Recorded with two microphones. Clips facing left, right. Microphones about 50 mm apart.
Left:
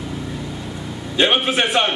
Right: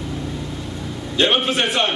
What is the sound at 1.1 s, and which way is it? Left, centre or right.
Speech, centre.